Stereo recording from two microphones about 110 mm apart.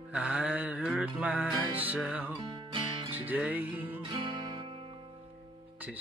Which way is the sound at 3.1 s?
15° right (ahead or behind).